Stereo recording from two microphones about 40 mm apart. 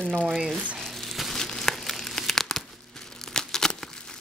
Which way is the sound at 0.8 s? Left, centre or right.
Centre.